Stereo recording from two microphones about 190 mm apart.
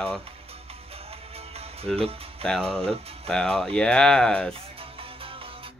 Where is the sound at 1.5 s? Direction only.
30° right (ahead or behind).